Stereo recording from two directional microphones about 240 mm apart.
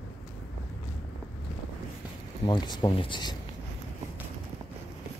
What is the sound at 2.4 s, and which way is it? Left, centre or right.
Speech, centre.